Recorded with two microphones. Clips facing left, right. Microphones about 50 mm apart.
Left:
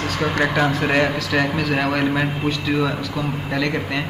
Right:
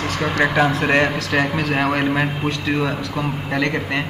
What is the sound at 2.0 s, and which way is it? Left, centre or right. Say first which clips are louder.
Speech: right 1 dB; centre.